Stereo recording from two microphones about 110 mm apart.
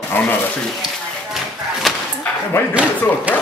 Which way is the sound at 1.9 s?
Centre (ahead or behind).